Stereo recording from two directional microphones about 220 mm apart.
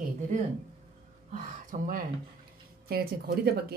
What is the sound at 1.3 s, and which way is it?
Speech, 40° right (ahead or behind).